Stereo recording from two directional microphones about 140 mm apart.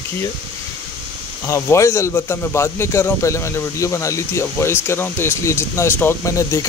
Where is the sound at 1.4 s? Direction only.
20° left (ahead or behind).